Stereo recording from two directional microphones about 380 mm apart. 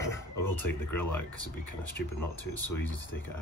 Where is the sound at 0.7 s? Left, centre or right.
Left.